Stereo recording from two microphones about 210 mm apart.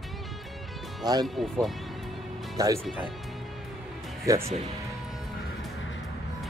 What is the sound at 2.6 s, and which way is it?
Speech, 15° right (ahead or behind).